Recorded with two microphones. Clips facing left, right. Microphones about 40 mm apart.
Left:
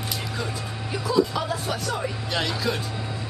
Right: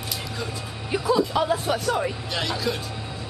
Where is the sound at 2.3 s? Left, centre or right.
Centre.